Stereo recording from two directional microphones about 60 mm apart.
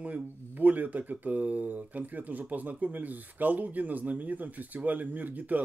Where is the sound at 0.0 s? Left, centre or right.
Right.